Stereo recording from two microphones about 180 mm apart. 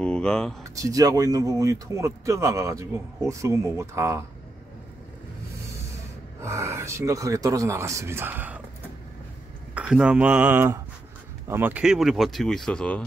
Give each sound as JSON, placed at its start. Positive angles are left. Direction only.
{"t": 0.0, "sound": "speech", "side_deg": 5}
{"t": 0.7, "sound": "speech", "side_deg": -20}
{"t": 6.4, "sound": "speech", "side_deg": -15}
{"t": 9.8, "sound": "speech", "side_deg": -5}